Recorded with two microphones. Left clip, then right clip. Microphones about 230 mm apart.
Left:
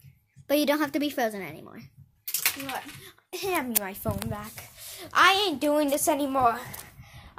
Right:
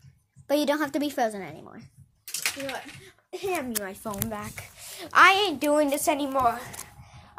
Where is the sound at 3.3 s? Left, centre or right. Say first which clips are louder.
Left 1 dB; left.